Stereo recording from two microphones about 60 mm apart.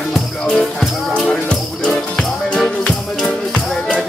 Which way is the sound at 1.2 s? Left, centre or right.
Centre.